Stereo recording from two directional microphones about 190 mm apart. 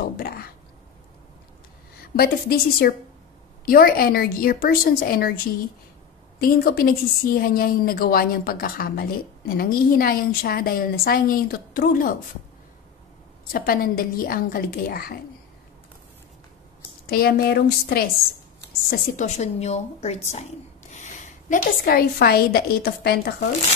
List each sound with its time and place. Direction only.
0.0 s a sound: 50° left (ahead or behind)
2.1 s a woman's voice: 50° left (ahead or behind)
6.4 s a woman's voice: 50° left (ahead or behind)
13.5 s a woman's voice: 50° left (ahead or behind)
17.1 s a woman's voice: 55° left (ahead or behind)
18.9 s a woman's voice: 45° left (ahead or behind)